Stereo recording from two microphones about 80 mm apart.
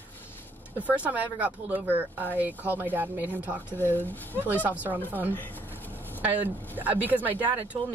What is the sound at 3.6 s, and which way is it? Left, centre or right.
Speech, left.